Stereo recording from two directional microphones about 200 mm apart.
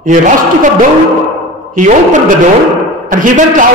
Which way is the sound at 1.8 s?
40° right (ahead or behind).